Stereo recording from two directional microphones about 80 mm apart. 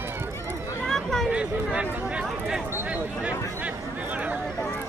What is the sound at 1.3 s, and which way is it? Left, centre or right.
Speech, centre.